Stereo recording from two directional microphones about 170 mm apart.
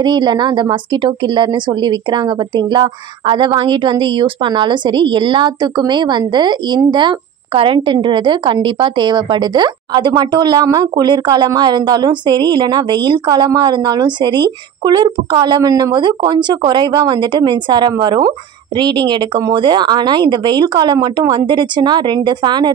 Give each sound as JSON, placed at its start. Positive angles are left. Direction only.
{"t": 0.0, "sound": "a woman's voice", "side_deg": -25}